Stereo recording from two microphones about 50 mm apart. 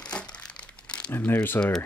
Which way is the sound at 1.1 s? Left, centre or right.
Left.